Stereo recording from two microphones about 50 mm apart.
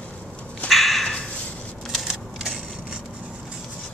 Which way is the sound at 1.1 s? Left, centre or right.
Centre.